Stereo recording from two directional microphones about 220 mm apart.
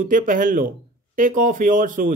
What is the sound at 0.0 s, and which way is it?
A man's voice, 40° right (ahead or behind).